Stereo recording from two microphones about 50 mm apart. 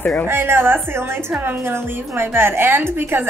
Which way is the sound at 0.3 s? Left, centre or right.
Right.